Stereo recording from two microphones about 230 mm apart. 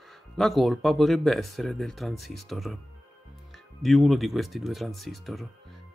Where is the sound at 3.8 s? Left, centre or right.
Centre.